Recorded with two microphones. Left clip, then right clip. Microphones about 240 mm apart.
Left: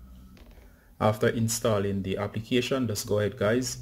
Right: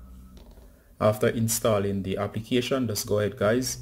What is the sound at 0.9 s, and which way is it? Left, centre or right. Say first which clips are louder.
Speech: right 2 dB; centre.